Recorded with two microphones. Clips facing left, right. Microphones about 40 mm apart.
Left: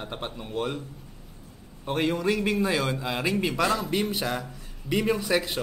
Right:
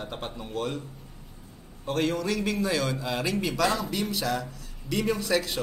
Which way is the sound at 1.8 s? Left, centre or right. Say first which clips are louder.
Left 1 dB; centre.